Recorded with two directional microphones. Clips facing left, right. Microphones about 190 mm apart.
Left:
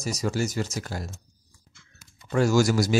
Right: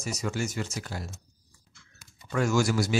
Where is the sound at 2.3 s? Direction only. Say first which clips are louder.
Left 4 dB; 35° left (ahead or behind).